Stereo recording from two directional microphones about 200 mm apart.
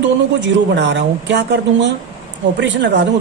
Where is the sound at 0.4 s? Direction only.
60° right (ahead or behind).